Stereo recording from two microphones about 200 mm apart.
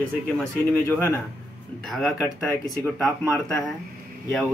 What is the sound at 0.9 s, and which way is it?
Speech, 5° left (ahead or behind).